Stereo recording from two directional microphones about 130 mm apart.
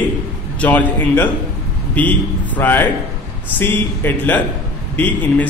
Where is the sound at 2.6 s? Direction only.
15° left (ahead or behind).